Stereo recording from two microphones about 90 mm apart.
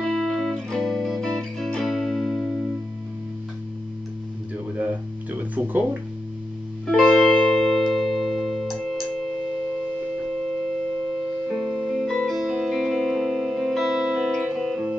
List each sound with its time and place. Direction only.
0.0 s music: 5° left (ahead or behind)
4.7 s music: 15° right (ahead or behind)
7.2 s music: 10° left (ahead or behind)
11.5 s music: centre (ahead or behind)